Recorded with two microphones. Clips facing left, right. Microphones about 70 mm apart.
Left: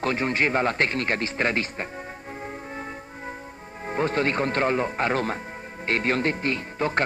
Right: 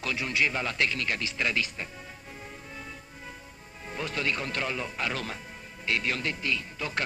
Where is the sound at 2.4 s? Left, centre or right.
Left.